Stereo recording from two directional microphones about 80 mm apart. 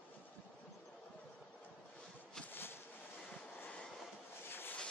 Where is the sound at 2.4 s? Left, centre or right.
Left.